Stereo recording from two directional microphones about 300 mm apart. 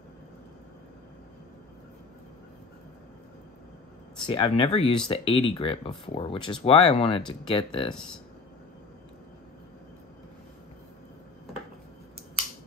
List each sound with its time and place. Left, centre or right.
4.3 s speech: centre